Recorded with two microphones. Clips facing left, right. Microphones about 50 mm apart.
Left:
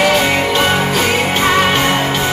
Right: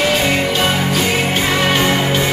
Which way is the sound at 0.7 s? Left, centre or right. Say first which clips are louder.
Left 2 dB; centre.